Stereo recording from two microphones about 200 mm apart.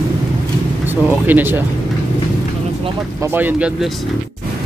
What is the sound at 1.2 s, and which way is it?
Speech, 10° right (ahead or behind).